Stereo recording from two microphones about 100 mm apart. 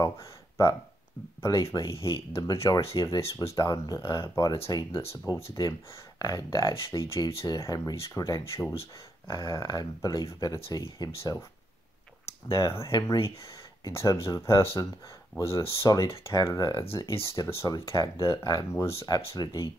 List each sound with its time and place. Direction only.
0.0 s a sound: 30° left (ahead or behind)
1.4 s speech: 35° left (ahead or behind)
12.4 s speech: 30° left (ahead or behind)
16.9 s speech: 25° left (ahead or behind)
18.7 s speech: 30° left (ahead or behind)
19.0 s speech: 45° left (ahead or behind)